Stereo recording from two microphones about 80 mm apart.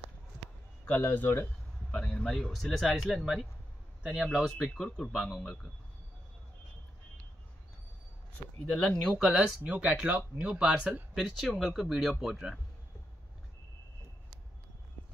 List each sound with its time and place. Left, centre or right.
0.8 s speech: left
2.0 s speech: centre
4.0 s speech: centre
4.6 s speech: centre
8.6 s speech: centre
9.2 s speech: centre
9.6 s speech: centre
11.1 s speech: centre